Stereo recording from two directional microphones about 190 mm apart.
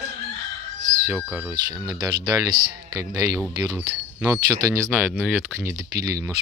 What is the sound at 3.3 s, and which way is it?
Speech, centre (ahead or behind).